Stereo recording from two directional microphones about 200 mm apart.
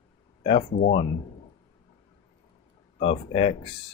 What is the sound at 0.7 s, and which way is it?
Speech, 45° left (ahead or behind).